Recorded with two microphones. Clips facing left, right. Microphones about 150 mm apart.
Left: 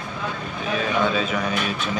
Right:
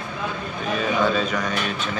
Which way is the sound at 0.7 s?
Centre (ahead or behind).